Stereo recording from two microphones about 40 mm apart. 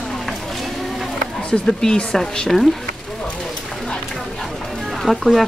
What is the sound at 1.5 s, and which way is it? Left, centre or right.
Speech, centre.